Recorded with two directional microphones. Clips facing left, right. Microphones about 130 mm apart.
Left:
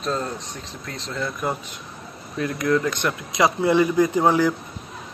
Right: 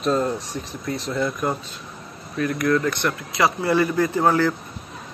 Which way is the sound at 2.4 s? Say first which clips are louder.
Right 1 dB; 20° left (ahead or behind).